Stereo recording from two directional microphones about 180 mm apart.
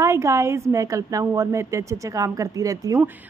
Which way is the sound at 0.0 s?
15° right (ahead or behind).